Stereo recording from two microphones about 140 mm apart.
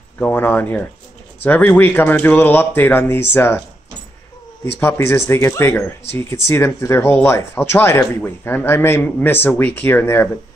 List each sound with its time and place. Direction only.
0.2 s speech: 15° left (ahead or behind)
4.7 s speech: 15° left (ahead or behind)